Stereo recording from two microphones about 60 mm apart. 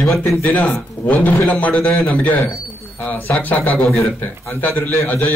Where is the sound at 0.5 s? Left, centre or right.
Left.